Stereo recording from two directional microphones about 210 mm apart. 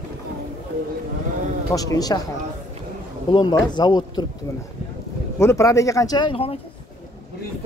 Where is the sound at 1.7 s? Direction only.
15° left (ahead or behind).